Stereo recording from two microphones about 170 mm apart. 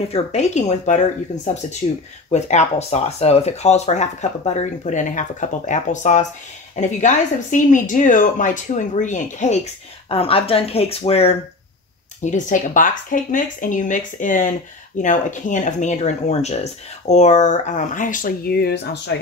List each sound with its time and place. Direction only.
0.1 s speech: 40° left (ahead or behind)
10.0 s speech: 35° left (ahead or behind)
12.2 s speech: 45° left (ahead or behind); by 19.1 s 70° left (ahead or behind)